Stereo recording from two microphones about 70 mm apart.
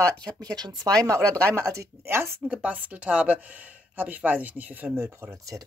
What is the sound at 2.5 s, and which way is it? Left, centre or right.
Speech, right.